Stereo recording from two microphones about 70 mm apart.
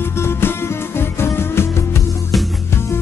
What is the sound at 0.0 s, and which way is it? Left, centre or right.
Music, left.